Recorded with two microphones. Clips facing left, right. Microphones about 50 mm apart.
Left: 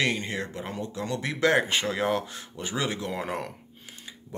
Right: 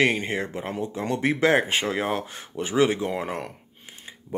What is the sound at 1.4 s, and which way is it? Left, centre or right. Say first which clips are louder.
Speech: even; centre.